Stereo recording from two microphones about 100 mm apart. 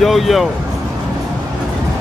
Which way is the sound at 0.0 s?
Centre (ahead or behind).